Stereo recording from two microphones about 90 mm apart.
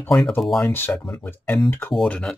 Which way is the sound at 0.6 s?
25° left (ahead or behind).